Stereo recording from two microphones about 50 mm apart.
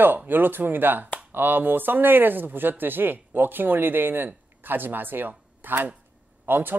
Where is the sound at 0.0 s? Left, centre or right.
Right.